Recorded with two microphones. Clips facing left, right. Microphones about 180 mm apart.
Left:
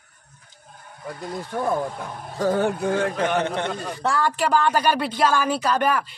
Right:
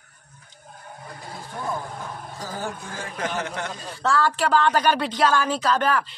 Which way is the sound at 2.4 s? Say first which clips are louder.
Left 13 dB; 65° left (ahead or behind).